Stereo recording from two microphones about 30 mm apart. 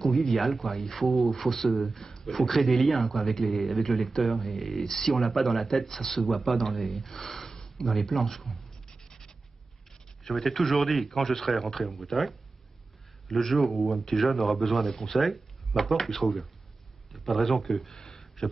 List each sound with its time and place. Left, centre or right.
0.1 s a man's voice: centre
7.8 s speech: centre
8.8 s scratch: centre
10.2 s speech: centre
17.9 s a sound: centre